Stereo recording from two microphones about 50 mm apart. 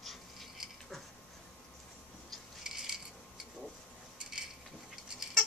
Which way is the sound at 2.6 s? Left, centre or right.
Centre.